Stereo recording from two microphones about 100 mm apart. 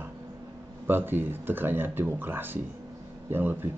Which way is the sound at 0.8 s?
20° right (ahead or behind).